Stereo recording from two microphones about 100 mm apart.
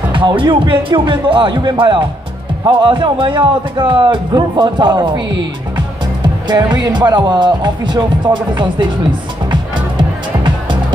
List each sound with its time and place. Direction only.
0.1 s a man's voice: 55° right (ahead or behind)
6.2 s a man's voice: 45° right (ahead or behind)
9.5 s music: 50° right (ahead or behind)